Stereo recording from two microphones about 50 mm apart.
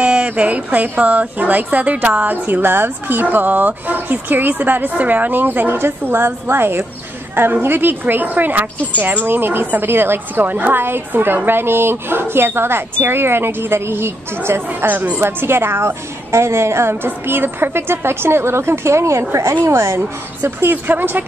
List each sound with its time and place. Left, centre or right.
0.0 s a woman's voice: right
14.9 s a woman's voice: right
19.6 s a woman's voice: right
20.7 s a woman's voice: right